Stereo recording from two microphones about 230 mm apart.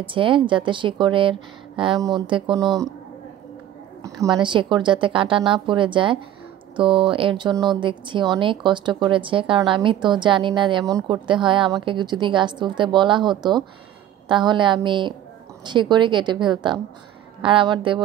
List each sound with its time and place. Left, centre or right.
0.0 s speech: right
4.0 s speech: centre